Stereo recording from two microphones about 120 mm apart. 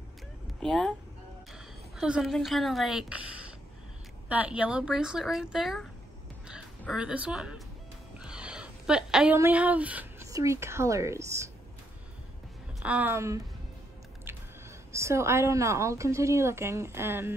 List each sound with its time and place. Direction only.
0.6 s speech: 5° left (ahead or behind)
1.5 s a sound: 5° right (ahead or behind)
2.3 s a woman's voice: centre (ahead or behind)
4.3 s a woman's voice: 10° right (ahead or behind)
6.9 s a woman's voice: 5° right (ahead or behind)
8.2 s a sound: 5° right (ahead or behind)
9.4 s speech: 10° right (ahead or behind)
10.2 s a woman's voice: 25° right (ahead or behind)
12.8 s a woman's voice: 10° right (ahead or behind)
13.1 s a woman's voice: 25° right (ahead or behind)
14.9 s a woman's voice: 25° right (ahead or behind)